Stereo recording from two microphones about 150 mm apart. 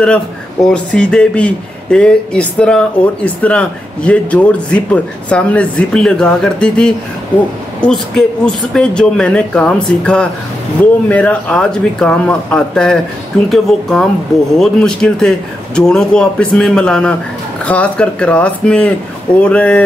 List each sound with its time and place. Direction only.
0.7 s a man's voice: 5° left (ahead or behind)